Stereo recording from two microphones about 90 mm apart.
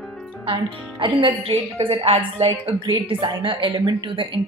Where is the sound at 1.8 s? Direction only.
90° right.